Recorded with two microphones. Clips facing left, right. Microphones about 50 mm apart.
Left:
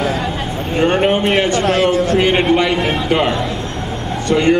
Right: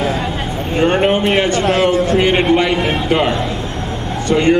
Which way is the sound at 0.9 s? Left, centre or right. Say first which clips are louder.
Even; centre.